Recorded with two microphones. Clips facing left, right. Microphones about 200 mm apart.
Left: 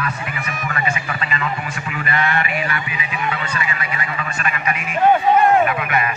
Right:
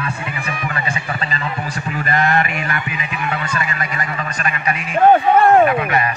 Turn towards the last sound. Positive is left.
turn(degrees=-35)  # may be behind; listen again after turning